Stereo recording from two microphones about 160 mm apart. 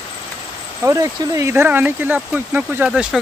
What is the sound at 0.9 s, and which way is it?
Speech, 20° right (ahead or behind).